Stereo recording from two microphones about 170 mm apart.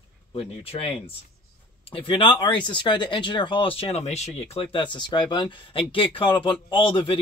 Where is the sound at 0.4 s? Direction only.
35° left (ahead or behind).